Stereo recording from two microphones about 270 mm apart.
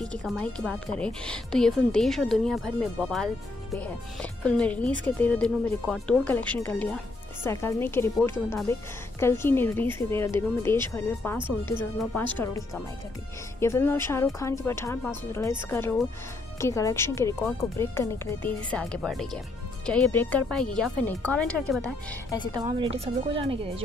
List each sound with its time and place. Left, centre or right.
0.0 s a woman's voice: centre
22.6 s speech: centre